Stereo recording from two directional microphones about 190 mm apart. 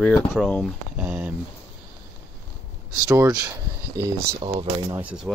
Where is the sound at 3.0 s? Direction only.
15° right (ahead or behind).